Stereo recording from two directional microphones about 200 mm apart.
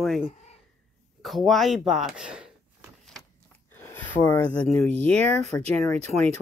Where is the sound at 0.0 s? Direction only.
Centre (ahead or behind).